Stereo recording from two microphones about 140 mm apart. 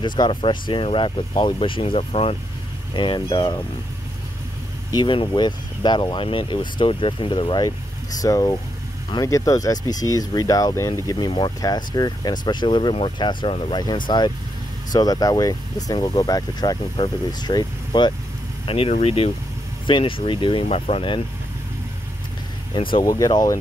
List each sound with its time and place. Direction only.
0.0 s speech: 35° left (ahead or behind)
4.9 s speech: 35° left (ahead or behind)
18.7 s speech: 45° left (ahead or behind)
22.8 s speech: 40° left (ahead or behind)
23.0 s speech: 25° left (ahead or behind)